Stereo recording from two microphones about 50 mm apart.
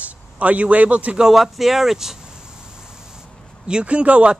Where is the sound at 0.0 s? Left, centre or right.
Right.